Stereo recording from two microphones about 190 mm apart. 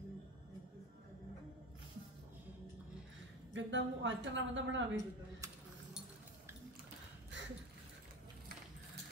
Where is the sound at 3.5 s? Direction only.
80° right.